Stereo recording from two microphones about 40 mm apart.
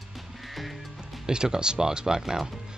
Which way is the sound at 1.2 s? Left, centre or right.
Centre.